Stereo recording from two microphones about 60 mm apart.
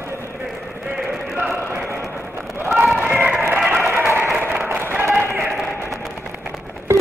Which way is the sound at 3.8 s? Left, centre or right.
Right.